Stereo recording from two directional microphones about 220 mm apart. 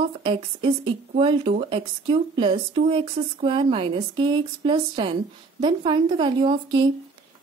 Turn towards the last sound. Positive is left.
turn(degrees=-20)  # may be behind; listen again after turning